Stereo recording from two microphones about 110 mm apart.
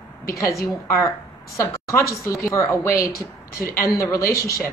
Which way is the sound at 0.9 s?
25° left (ahead or behind).